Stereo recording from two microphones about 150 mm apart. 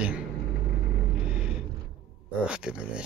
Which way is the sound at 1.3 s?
5° right (ahead or behind).